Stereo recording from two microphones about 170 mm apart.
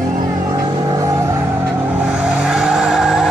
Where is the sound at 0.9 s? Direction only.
20° right (ahead or behind).